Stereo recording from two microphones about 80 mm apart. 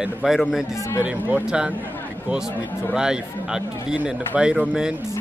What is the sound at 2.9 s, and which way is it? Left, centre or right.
Speech, centre.